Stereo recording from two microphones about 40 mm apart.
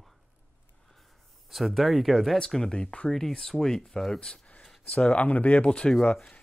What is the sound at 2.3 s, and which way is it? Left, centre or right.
Speech, centre.